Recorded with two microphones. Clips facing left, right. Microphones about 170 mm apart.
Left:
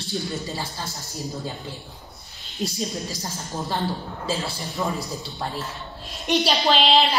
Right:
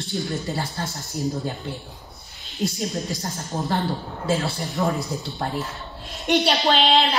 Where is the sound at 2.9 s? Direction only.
Centre (ahead or behind).